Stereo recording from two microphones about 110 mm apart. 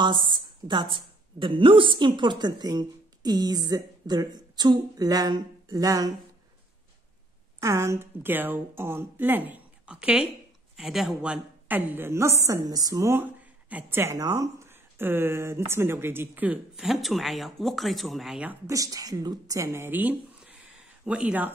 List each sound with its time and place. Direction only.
0.0 s a woman's voice: 45° right (ahead or behind)
7.6 s a woman's voice: 25° right (ahead or behind); by 11.3 s 5° right (ahead or behind)
11.6 s a woman's voice: 15° right (ahead or behind)
16.7 s speech: centre (ahead or behind)
18.7 s a woman's voice: 30° right (ahead or behind); by 21.5 s 10° right (ahead or behind)